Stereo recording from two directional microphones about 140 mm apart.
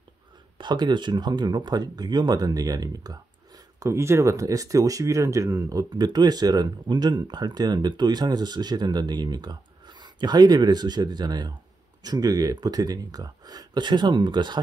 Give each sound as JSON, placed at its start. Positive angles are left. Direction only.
{"t": 0.6, "sound": "speech", "side_deg": -30}